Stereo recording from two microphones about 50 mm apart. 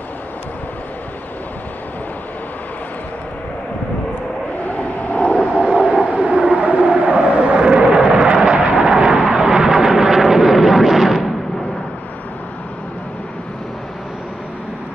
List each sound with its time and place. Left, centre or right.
4.7 s vehicle: left
5.7 s vehicle: centre
6.0 s vehicle: right; by 11.3 s centre